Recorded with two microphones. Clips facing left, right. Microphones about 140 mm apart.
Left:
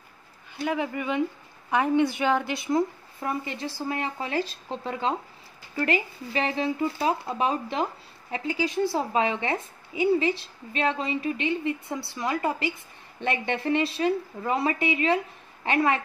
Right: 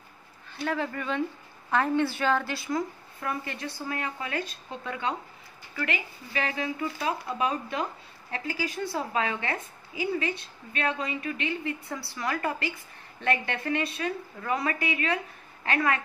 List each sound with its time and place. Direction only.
0.7 s speech: 15° left (ahead or behind)